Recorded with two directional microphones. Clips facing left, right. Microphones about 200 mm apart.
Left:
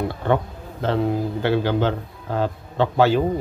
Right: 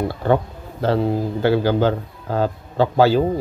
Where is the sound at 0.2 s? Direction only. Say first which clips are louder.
Right 4 dB; 35° right (ahead or behind).